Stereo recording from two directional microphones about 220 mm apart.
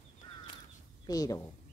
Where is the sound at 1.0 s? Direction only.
15° left (ahead or behind).